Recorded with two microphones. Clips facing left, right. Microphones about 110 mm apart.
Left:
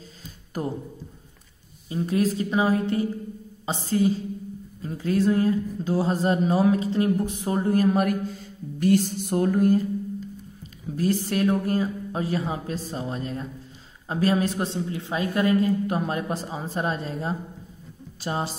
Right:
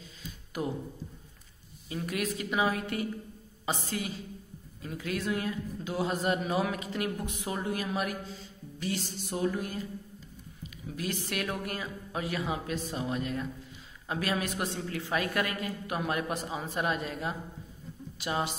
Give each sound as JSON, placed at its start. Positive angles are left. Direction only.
{"t": 0.5, "sound": "speech", "side_deg": 40}
{"t": 1.9, "sound": "speech", "side_deg": 30}
{"t": 11.0, "sound": "speech", "side_deg": 40}